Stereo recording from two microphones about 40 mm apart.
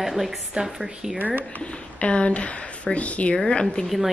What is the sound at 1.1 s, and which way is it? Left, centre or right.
Speech, right.